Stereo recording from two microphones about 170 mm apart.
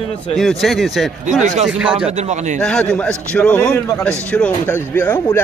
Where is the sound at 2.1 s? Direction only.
45° right (ahead or behind).